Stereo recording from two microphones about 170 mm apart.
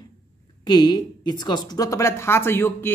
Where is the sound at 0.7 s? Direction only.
25° left (ahead or behind).